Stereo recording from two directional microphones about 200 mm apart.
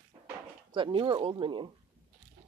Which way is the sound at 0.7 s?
25° right (ahead or behind).